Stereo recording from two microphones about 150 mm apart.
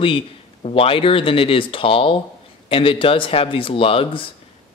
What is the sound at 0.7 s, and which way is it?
Speech, 40° left (ahead or behind).